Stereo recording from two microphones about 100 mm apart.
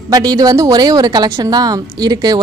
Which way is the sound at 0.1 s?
40° right (ahead or behind).